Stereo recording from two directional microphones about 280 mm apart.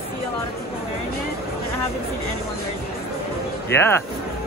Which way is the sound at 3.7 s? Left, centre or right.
Centre.